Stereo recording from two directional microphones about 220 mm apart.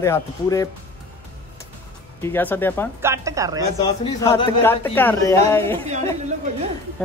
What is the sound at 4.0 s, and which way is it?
Speech, 20° left (ahead or behind).